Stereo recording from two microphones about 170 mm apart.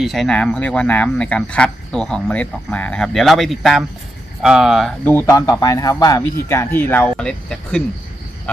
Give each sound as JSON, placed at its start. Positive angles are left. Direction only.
{"t": 0.0, "sound": "speech", "side_deg": 0}
{"t": 5.1, "sound": "a man's voice", "side_deg": 20}